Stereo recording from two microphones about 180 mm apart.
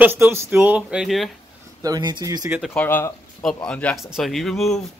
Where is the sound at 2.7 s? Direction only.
10° left (ahead or behind).